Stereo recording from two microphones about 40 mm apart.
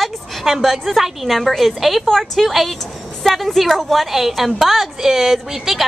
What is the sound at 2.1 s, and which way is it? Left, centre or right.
Speech, centre.